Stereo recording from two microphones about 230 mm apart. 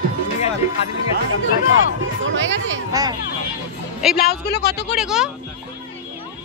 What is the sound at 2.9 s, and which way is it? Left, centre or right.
Speech, centre.